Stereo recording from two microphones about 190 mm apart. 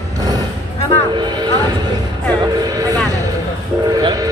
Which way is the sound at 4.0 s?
20° right (ahead or behind).